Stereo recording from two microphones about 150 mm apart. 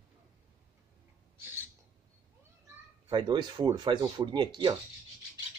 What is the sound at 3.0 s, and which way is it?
Speech, 30° right (ahead or behind).